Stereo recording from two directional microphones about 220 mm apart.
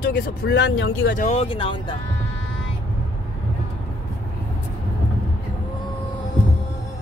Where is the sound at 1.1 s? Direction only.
35° left (ahead or behind).